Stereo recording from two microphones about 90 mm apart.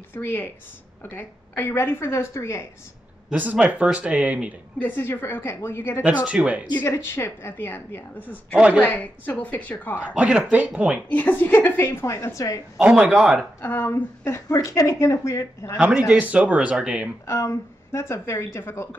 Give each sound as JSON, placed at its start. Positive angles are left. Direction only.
{"t": 0.1, "sound": "a woman's voice", "side_deg": 25}
{"t": 3.3, "sound": "speech", "side_deg": -20}
{"t": 4.7, "sound": "a woman's voice", "side_deg": 20}
{"t": 6.0, "sound": "speech", "side_deg": -15}
{"t": 6.8, "sound": "a woman's voice", "side_deg": 30}
{"t": 8.5, "sound": "speech", "side_deg": -10}
{"t": 8.8, "sound": "a woman's voice", "side_deg": 20}
{"t": 9.9, "sound": "speech", "side_deg": -15}
{"t": 11.1, "sound": "a woman's voice", "side_deg": 20}
{"t": 12.8, "sound": "speech", "side_deg": -15}
{"t": 13.6, "sound": "speech", "side_deg": 25}
{"t": 15.9, "sound": "speech", "side_deg": -15}
{"t": 17.3, "sound": "a woman's voice", "side_deg": 30}